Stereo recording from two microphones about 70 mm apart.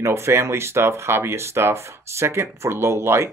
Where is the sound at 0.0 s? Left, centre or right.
Right.